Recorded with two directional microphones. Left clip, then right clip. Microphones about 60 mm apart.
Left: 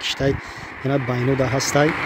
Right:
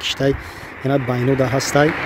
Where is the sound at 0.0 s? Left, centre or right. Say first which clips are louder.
Right 3 dB; right.